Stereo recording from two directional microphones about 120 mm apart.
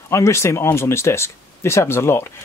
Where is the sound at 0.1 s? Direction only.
25° left (ahead or behind).